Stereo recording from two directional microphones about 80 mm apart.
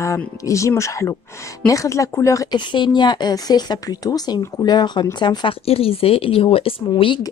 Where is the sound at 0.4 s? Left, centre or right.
Left.